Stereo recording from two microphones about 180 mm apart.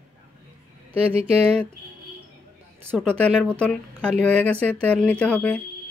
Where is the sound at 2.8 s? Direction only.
10° right (ahead or behind).